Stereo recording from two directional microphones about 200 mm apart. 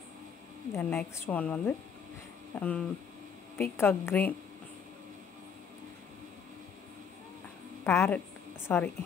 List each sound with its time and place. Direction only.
0.7 s a woman's voice: 10° left (ahead or behind)
7.8 s a woman's voice: 10° left (ahead or behind)